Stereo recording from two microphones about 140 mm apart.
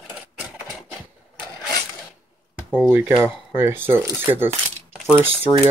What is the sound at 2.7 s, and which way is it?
Speech, 15° right (ahead or behind).